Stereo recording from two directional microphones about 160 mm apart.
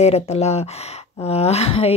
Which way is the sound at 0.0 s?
40° left (ahead or behind).